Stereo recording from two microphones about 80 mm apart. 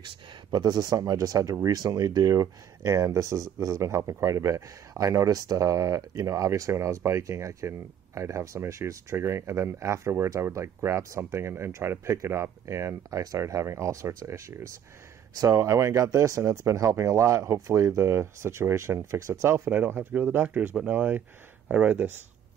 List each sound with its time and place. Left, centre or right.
0.0 s speech: right